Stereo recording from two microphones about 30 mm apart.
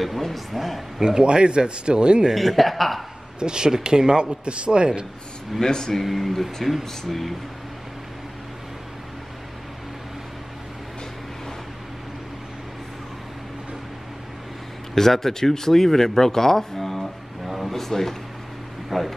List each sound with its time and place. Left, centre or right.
0.0 s speech: centre
1.0 s speech: right
2.3 s speech: centre
3.3 s speech: right
4.2 s speech: right
5.7 s speech: left
6.0 s speech: centre
15.0 s speech: centre
17.5 s a sound: centre
17.7 s speech: centre